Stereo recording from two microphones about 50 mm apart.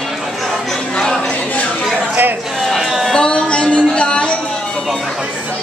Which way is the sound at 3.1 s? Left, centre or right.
Centre.